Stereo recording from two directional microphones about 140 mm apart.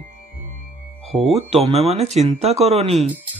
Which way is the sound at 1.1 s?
Centre (ahead or behind).